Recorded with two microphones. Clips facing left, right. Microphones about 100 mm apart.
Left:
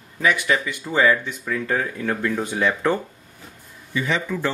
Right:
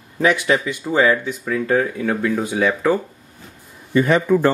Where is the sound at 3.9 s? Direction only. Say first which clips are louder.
Right 9 dB; 50° right (ahead or behind).